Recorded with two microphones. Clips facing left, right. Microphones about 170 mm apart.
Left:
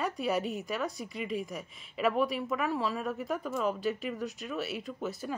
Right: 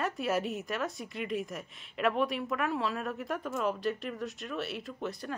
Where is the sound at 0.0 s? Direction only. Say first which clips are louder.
Even; centre (ahead or behind).